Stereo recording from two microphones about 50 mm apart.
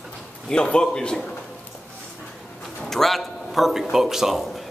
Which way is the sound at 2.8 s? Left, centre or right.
Centre.